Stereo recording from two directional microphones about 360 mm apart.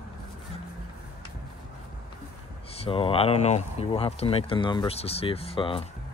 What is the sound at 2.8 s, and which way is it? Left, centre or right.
Speech, centre.